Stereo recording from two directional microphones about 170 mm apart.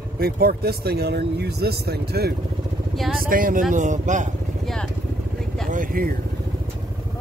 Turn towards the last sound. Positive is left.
turn(degrees=-60)  # may be behind; listen again after turning